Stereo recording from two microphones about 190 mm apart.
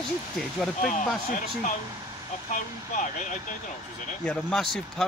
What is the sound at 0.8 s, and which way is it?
Speech, 40° left (ahead or behind).